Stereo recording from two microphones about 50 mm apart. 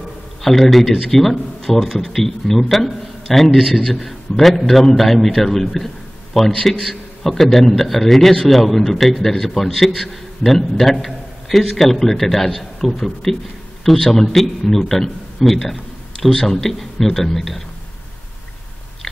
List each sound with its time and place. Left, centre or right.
0.4 s a man's voice: centre